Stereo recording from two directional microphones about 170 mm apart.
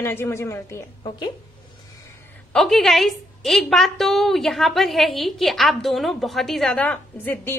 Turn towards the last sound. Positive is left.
turn(degrees=10)  # may be behind; listen again after turning